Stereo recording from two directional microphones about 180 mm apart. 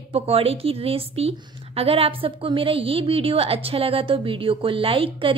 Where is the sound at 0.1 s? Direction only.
35° right (ahead or behind).